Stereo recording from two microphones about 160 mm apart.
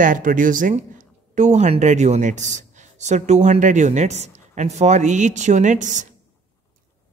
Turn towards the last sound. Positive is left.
turn(degrees=-50)  # may be behind; listen again after turning